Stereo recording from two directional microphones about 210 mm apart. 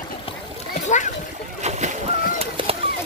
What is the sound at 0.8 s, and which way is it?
Splash, 35° left (ahead or behind).